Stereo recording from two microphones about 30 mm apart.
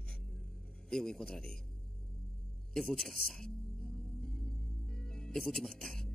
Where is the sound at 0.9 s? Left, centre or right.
Centre.